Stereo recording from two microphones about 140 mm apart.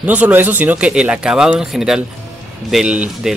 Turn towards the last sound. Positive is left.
turn(degrees=-5)  # may be behind; listen again after turning